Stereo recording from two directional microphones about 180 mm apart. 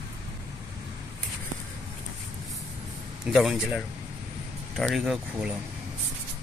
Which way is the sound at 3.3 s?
Centre (ahead or behind).